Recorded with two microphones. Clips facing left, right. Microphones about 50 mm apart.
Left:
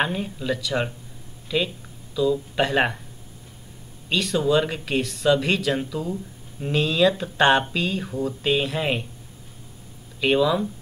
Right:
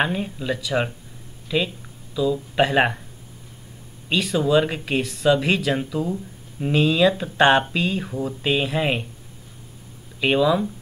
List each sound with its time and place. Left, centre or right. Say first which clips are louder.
0.0 s speech: right 2 dB; centre
4.1 s speech: right 2 dB; centre
10.2 s speech: right 1 dB; centre